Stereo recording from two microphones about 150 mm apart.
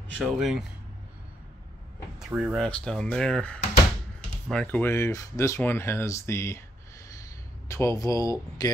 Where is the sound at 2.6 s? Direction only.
5° left (ahead or behind).